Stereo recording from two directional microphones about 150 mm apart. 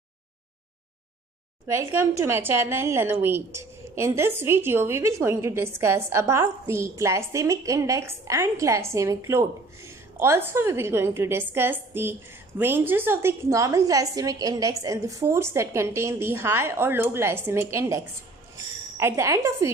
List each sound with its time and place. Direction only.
1.7 s a woman's voice: 20° right (ahead or behind)